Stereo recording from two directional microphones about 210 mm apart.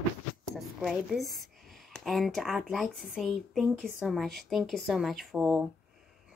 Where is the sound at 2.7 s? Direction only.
Centre (ahead or behind).